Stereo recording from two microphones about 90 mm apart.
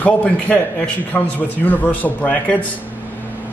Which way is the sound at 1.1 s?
20° left (ahead or behind).